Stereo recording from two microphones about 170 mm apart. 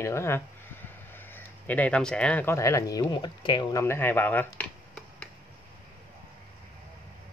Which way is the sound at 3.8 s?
15° left (ahead or behind).